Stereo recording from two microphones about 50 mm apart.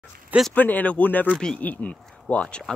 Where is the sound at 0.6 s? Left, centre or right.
Left.